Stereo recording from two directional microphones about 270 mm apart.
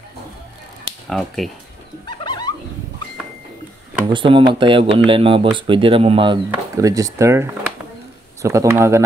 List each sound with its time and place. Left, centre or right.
1.0 s speech: centre
2.0 s a sound: centre
4.1 s speech: centre